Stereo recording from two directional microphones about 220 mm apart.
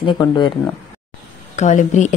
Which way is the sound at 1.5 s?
35° left (ahead or behind).